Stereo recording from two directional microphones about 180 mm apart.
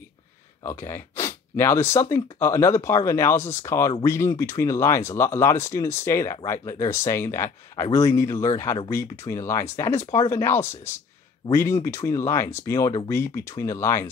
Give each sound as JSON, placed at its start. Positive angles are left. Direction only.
{"t": 0.7, "sound": "speech", "side_deg": 15}